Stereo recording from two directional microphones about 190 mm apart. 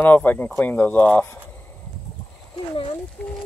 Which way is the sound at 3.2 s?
5° left (ahead or behind).